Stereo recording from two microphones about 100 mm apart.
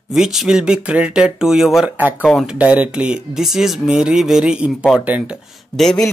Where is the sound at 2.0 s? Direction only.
15° right (ahead or behind).